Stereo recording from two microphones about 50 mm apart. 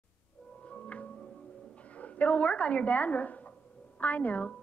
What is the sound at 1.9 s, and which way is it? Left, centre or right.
Speech, left.